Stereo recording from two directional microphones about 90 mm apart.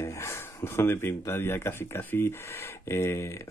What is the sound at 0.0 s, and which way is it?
Speech, 30° left (ahead or behind).